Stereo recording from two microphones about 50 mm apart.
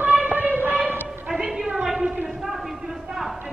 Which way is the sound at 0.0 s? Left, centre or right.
Right.